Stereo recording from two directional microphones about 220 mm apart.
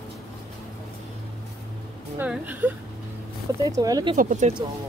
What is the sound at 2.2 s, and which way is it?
A woman's voice, 10° right (ahead or behind).